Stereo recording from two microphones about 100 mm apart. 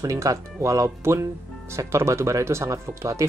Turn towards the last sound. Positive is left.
turn(degrees=-30)  # may be behind; listen again after turning